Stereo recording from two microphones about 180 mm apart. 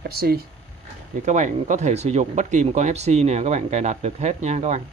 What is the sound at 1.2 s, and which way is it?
Speech, 45° right (ahead or behind).